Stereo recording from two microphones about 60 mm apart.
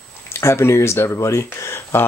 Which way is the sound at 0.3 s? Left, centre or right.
Left.